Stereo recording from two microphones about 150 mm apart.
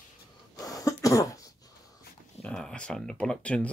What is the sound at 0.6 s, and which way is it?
Cough, 25° left (ahead or behind).